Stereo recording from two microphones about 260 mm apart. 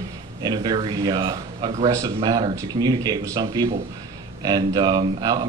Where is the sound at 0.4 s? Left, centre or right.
Centre.